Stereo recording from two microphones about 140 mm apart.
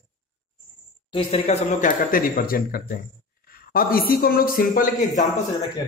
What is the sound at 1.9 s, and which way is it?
A man's voice, 85° left.